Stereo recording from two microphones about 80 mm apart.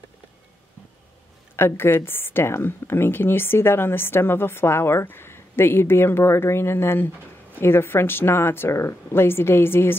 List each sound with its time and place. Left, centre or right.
1.6 s a woman's voice: left